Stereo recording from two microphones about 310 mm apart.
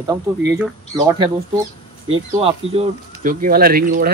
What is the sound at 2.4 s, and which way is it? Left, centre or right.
Speech, centre.